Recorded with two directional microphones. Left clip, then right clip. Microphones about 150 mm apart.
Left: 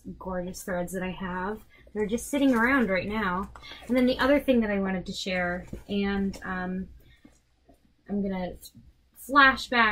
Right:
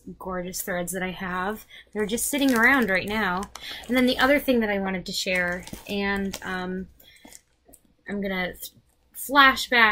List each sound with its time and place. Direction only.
0.3 s speech: 25° right (ahead or behind)
8.1 s speech: 15° right (ahead or behind)